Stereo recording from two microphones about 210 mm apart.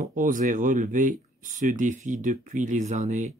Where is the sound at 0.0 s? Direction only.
40° right (ahead or behind).